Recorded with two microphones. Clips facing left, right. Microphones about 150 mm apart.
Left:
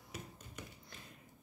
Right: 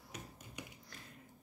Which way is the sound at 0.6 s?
15° right (ahead or behind).